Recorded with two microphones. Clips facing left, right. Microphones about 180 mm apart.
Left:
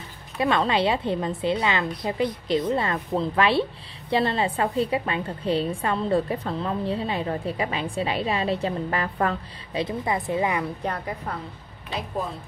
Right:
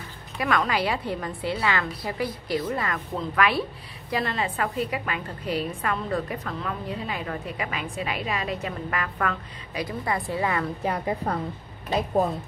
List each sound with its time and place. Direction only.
0.4 s a woman's voice: 25° left (ahead or behind)